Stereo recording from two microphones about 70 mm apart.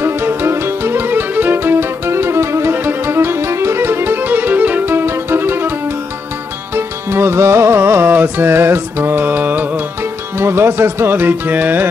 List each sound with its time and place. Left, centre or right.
0.0 s music: right
10.3 s music: right